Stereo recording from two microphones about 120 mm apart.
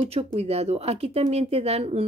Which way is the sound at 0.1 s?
60° right (ahead or behind).